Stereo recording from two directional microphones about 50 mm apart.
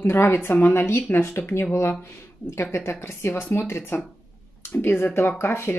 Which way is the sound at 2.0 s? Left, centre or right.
Left.